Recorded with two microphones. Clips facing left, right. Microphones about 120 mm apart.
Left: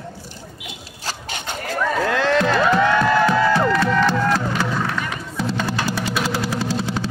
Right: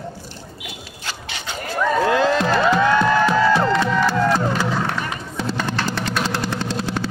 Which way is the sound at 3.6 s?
20° right (ahead or behind).